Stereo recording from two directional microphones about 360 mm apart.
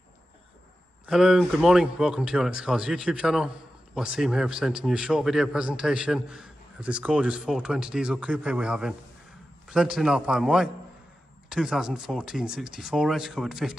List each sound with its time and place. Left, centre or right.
1.0 s speech: centre